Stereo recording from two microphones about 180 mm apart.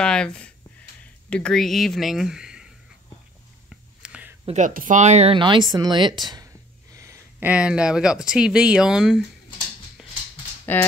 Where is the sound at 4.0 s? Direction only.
5° right (ahead or behind).